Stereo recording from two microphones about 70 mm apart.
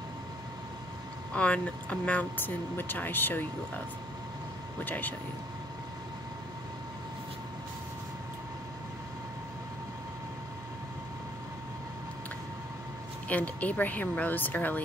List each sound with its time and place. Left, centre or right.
1.3 s speech: centre
4.8 s speech: left
13.3 s speech: left